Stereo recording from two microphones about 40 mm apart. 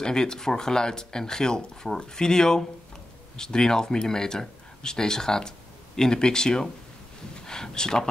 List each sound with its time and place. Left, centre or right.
0.0 s speech: centre